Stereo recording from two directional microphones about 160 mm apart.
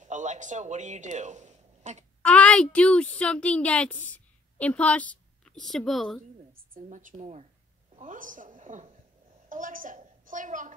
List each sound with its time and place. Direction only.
0.0 s speech: 50° right (ahead or behind)
2.2 s a woman's voice: 5° left (ahead or behind)
6.7 s a woman's voice: 55° right (ahead or behind)